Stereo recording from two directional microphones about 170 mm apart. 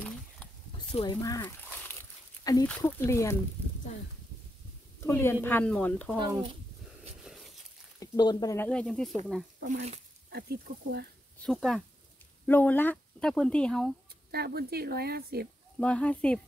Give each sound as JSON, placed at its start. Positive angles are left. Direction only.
{"t": 0.9, "sound": "speech", "side_deg": 25}
{"t": 5.0, "sound": "speech", "side_deg": 15}
{"t": 6.1, "sound": "speech", "side_deg": -25}
{"t": 8.0, "sound": "speech", "side_deg": 25}
{"t": 8.6, "sound": "speech", "side_deg": 5}
{"t": 9.6, "sound": "speech", "side_deg": -45}
{"t": 10.3, "sound": "speech", "side_deg": -65}
{"t": 11.4, "sound": "speech", "side_deg": 0}
{"t": 14.3, "sound": "speech", "side_deg": -65}
{"t": 15.8, "sound": "speech", "side_deg": 5}